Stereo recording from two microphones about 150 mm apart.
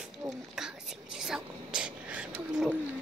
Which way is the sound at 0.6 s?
5° right (ahead or behind).